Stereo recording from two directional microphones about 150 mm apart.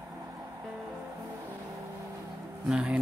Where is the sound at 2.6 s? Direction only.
10° right (ahead or behind).